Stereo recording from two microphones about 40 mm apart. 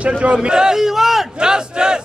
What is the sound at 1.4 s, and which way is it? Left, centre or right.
Speech, centre.